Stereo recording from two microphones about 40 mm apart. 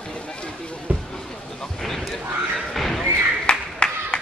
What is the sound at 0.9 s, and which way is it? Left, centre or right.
Speech, right.